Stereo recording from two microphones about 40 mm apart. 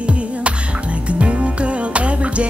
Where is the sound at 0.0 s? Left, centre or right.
Right.